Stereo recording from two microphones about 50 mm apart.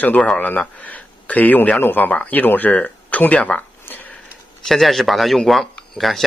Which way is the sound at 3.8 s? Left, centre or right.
Left.